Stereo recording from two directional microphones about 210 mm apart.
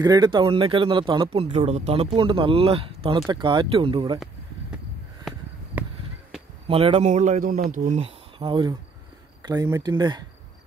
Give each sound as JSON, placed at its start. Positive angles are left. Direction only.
{"t": 0.0, "sound": "speech", "side_deg": -20}
{"t": 6.7, "sound": "speech", "side_deg": -25}